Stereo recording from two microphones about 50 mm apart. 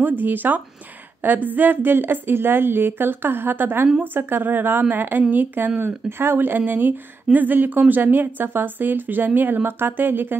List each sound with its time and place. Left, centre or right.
0.2 s a woman's voice: right